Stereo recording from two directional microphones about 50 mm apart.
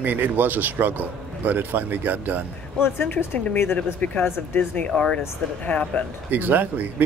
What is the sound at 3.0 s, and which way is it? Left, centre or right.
Speech, left.